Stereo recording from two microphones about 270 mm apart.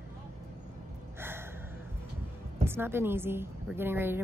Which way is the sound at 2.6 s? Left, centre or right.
Centre.